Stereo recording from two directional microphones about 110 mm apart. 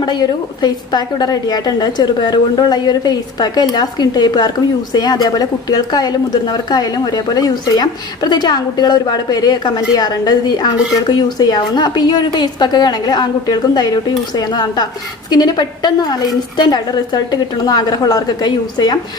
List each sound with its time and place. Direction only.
0.0 s a woman's voice: 40° left (ahead or behind)